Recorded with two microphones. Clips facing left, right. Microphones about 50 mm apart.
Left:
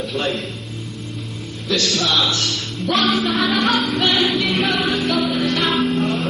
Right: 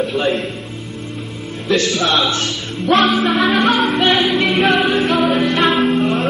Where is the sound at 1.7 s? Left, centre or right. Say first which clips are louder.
Right 4 dB; right.